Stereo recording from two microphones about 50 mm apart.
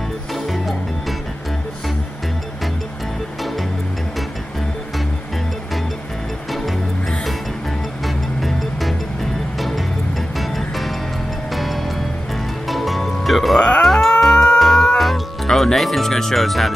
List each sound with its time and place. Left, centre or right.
0.3 s music: centre
6.5 s music: centre
13.6 s cat: centre
15.0 s music: centre